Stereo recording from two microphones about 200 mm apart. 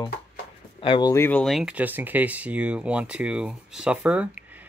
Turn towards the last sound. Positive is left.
turn(degrees=-10)  # may be behind; listen again after turning